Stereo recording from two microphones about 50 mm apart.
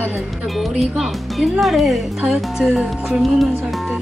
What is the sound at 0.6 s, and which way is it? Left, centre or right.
Speech, centre.